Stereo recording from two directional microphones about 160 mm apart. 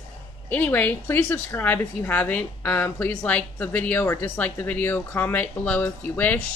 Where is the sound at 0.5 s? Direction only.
10° left (ahead or behind).